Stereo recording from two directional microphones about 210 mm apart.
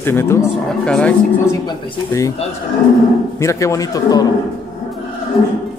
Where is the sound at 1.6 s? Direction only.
15° left (ahead or behind).